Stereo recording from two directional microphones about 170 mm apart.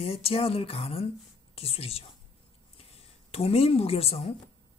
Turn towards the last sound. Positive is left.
turn(degrees=35)  # may be behind; listen again after turning